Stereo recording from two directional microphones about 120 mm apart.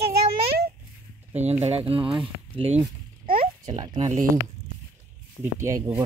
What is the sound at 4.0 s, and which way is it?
Speech, 75° right (ahead or behind).